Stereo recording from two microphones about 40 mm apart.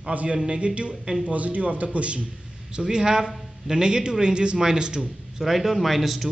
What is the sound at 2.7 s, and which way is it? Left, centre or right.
A man's voice, right.